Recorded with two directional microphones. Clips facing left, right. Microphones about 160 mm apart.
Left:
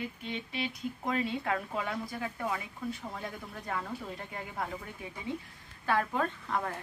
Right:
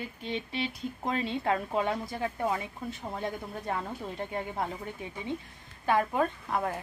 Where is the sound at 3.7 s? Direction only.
30° right (ahead or behind).